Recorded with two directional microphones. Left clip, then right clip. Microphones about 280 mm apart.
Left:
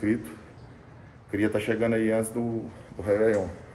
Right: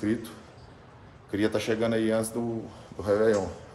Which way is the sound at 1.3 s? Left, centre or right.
Centre.